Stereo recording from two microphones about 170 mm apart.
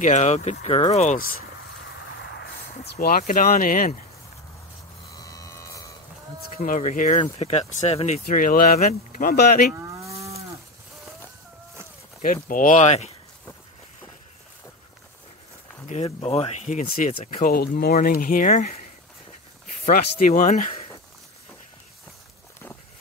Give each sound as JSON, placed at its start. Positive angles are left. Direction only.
{"t": 0.0, "sound": "speech", "side_deg": 45}
{"t": 3.0, "sound": "speech", "side_deg": 55}
{"t": 5.2, "sound": "electric shaver", "side_deg": 20}
{"t": 6.5, "sound": "speech", "side_deg": 45}
{"t": 9.8, "sound": "moo", "side_deg": -20}
{"t": 12.4, "sound": "speech", "side_deg": 50}
{"t": 15.9, "sound": "speech", "side_deg": 35}
{"t": 17.2, "sound": "speech", "side_deg": 55}
{"t": 19.9, "sound": "speech", "side_deg": 60}